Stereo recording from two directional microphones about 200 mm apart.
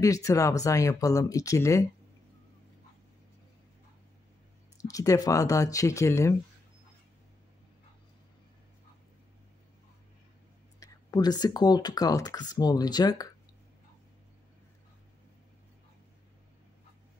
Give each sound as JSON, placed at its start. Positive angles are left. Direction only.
{"t": 0.0, "sound": "speech", "side_deg": 15}
{"t": 4.8, "sound": "speech", "side_deg": 15}
{"t": 10.8, "sound": "speech", "side_deg": 20}